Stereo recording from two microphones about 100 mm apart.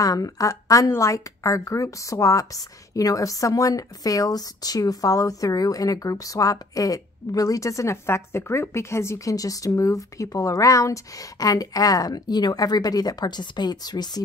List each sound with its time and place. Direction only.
0.0 s a woman's voice: 35° left (ahead or behind)